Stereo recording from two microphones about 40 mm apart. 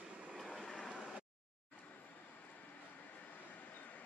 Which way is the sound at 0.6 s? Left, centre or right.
Centre.